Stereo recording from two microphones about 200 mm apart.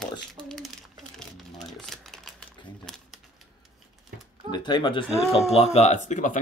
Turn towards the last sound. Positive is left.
turn(degrees=35)  # may be behind; listen again after turning